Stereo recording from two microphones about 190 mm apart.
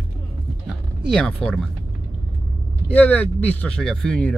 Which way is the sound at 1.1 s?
5° left (ahead or behind).